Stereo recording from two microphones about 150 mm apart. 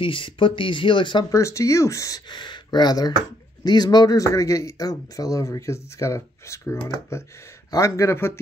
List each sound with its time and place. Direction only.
0.0 s speech: 35° left (ahead or behind)
1.3 s a man's voice: 20° left (ahead or behind)